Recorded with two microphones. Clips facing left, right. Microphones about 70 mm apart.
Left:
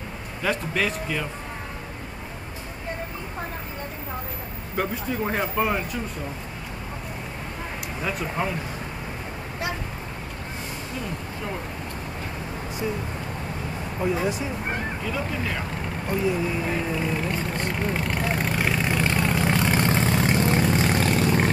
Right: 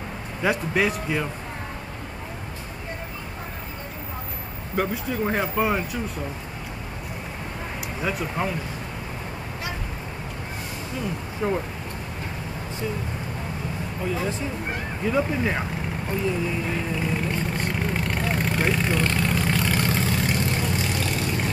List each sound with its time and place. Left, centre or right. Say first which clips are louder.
0.4 s speech: right 3 dB; centre
4.7 s speech: right 1 dB; centre
8.0 s speech: right 1 dB; centre
14.0 s speech: left 3 dB; centre
15.0 s speech: right 9 dB; right
16.1 s speech: left 2 dB; centre
17.9 s vehicle: even; centre; by 20.6 s left
20.7 s vehicle: left 5 dB; left